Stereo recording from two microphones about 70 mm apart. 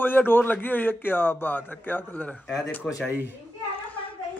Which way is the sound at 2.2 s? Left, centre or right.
Centre.